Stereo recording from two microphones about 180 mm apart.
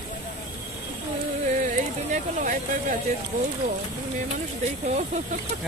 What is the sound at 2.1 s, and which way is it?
Speech, 45° right (ahead or behind).